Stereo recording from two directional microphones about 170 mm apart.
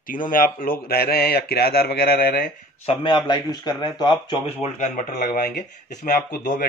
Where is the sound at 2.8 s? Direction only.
25° left (ahead or behind).